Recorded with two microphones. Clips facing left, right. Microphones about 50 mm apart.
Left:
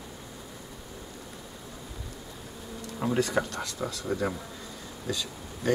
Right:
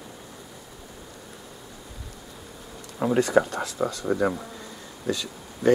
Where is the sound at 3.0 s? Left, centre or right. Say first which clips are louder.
Right 6 dB; centre.